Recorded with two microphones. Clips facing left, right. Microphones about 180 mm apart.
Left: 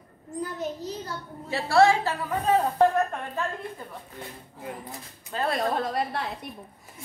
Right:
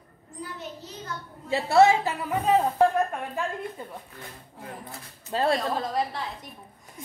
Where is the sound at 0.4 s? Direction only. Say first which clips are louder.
Left 6 dB; 40° left (ahead or behind).